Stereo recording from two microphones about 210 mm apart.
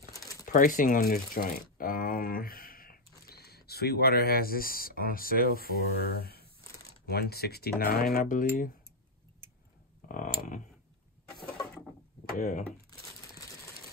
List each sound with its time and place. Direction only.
0.1 s crumpling: 15° left (ahead or behind)
0.5 s speech: 40° left (ahead or behind)
10.0 s speech: 40° left (ahead or behind)
11.5 s pulleys: centre (ahead or behind)
12.4 s speech: 35° left (ahead or behind)